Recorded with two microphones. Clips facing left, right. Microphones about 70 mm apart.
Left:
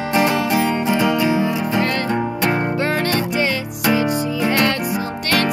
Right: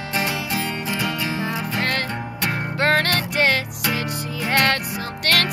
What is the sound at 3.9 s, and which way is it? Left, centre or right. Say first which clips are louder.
Music: left 11 dB; left.